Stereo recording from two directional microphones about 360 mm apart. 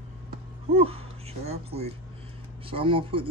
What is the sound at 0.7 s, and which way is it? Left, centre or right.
Speech, centre.